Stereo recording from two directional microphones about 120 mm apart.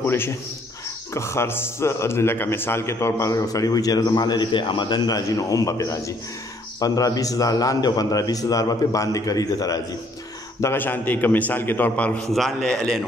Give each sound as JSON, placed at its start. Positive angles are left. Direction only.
{"t": 0.0, "sound": "a man's voice", "side_deg": 20}
{"t": 10.6, "sound": "a man's voice", "side_deg": 20}
{"t": 12.2, "sound": "a man's voice", "side_deg": 0}